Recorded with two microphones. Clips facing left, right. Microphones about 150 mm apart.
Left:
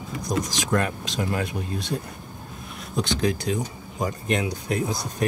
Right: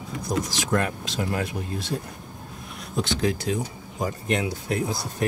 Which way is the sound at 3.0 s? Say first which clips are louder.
Left 1 dB; 20° left (ahead or behind).